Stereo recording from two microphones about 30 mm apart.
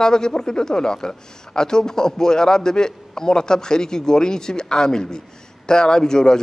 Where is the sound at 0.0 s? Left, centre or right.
Left.